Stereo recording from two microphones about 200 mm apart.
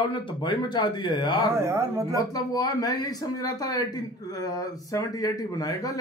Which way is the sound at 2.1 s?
20° left (ahead or behind).